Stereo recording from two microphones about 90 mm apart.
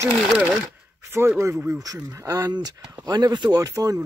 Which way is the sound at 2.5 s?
45° right (ahead or behind).